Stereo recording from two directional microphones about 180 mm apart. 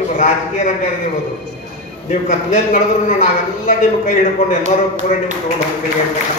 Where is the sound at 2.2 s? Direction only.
40° left (ahead or behind).